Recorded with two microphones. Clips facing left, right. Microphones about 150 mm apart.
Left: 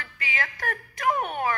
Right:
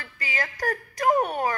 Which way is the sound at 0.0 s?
40° right (ahead or behind).